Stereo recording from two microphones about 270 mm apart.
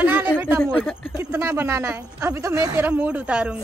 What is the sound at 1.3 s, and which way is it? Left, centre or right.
A woman's voice, centre.